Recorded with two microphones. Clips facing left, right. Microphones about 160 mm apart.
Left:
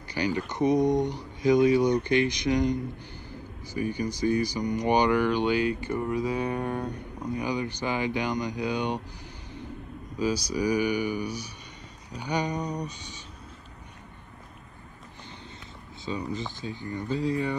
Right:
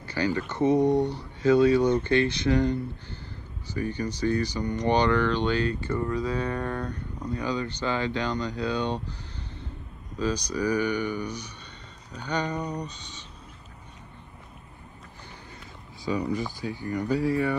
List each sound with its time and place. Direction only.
0.1 s speech: 15° left (ahead or behind)
16.1 s speech: 25° left (ahead or behind)